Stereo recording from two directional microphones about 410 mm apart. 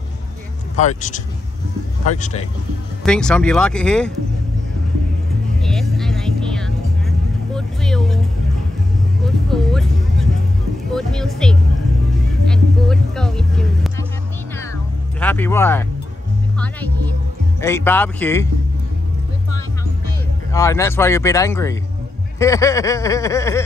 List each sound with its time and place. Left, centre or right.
0.7 s speech: centre
3.1 s speech: centre
5.6 s vehicle: centre
9.2 s music: centre
10.9 s vehicle: centre
12.4 s music: centre
15.1 s speech: centre
20.5 s speech: centre